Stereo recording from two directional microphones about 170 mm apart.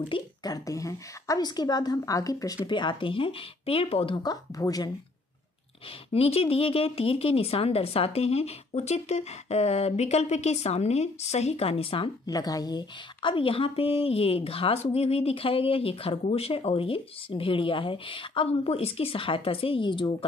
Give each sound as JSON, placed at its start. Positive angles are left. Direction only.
{"t": 0.1, "sound": "a woman's voice", "side_deg": 20}
{"t": 6.1, "sound": "a woman's voice", "side_deg": 35}
{"t": 12.3, "sound": "a woman's voice", "side_deg": 20}